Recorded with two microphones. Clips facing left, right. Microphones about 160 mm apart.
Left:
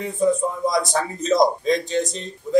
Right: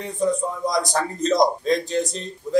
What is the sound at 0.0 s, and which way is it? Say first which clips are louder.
A man's voice: left 3 dB; 5° left (ahead or behind).